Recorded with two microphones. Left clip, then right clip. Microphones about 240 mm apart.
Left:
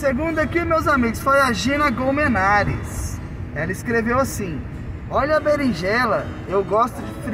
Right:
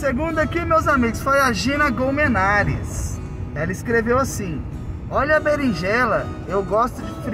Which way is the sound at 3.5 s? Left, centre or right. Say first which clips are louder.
Right 1 dB; centre.